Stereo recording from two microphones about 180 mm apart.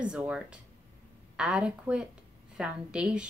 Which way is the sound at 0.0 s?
5° right (ahead or behind).